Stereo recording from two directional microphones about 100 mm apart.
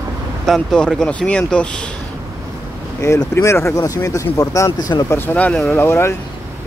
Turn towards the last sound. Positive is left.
turn(degrees=25)  # may be behind; listen again after turning